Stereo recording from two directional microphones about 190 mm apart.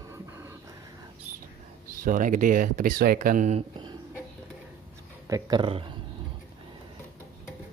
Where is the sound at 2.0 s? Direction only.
45° right (ahead or behind); by 3.9 s 30° right (ahead or behind).